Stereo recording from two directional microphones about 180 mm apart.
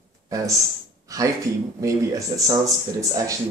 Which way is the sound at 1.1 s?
20° right (ahead or behind).